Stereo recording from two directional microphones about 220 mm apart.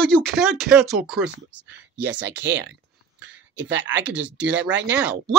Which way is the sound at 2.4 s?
55° right (ahead or behind).